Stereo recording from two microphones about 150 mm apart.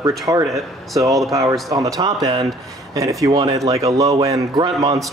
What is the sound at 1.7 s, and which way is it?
A man's voice, 25° right (ahead or behind).